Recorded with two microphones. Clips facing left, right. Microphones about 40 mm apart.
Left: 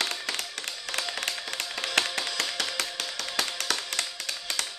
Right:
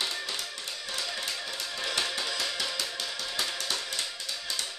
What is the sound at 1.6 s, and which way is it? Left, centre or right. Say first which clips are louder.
Music: left 2 dB; left.